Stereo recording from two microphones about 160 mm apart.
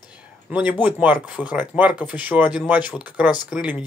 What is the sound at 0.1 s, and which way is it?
Speech, 10° right (ahead or behind).